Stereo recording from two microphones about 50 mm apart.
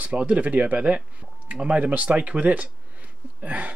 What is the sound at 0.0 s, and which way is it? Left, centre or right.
Speech, right.